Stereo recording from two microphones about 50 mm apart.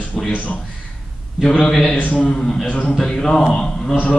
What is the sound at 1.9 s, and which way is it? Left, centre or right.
Speech, left.